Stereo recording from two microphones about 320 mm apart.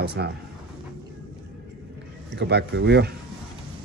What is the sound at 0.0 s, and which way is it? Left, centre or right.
Speech, right.